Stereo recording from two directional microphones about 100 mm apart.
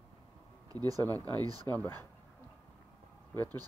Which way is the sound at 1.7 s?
20° left (ahead or behind).